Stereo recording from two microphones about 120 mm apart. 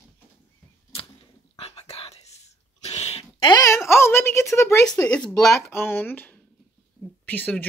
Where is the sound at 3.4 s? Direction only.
35° left (ahead or behind).